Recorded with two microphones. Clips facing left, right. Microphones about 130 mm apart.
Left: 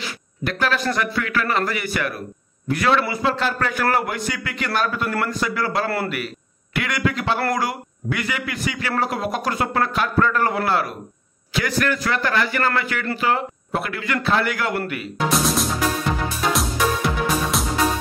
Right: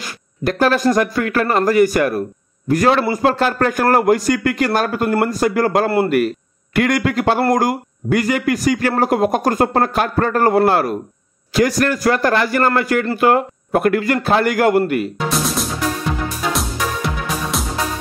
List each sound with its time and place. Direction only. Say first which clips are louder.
0.0 s a man's voice: right 6 dB; 40° right (ahead or behind)
15.1 s music: even; centre (ahead or behind)